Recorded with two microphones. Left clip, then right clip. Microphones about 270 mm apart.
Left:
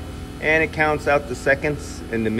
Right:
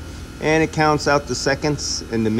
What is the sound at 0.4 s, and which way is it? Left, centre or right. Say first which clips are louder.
Speech: right 1 dB; centre.